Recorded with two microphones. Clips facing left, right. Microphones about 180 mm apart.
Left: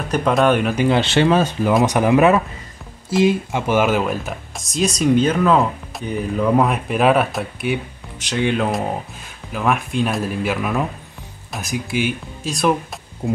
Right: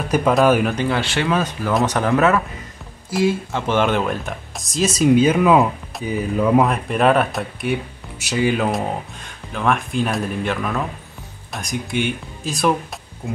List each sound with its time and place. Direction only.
0.1 s speech: centre (ahead or behind)
0.7 s speech: 20° left (ahead or behind)
1.9 s speech: 15° left (ahead or behind)
13.2 s speech: 20° left (ahead or behind)